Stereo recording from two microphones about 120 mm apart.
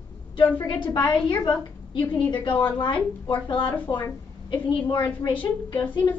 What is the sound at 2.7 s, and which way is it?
A woman's voice, 45° left (ahead or behind).